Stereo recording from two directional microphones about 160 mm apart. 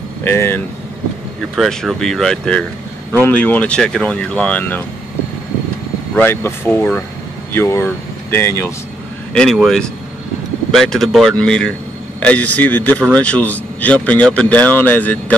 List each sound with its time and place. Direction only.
0.2 s a man's voice: 15° left (ahead or behind)
1.5 s a man's voice: centre (ahead or behind)
6.1 s a man's voice: 15° left (ahead or behind)
9.3 s a man's voice: 5° left (ahead or behind)